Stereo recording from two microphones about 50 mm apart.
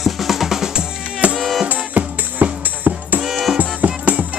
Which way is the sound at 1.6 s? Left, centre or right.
Right.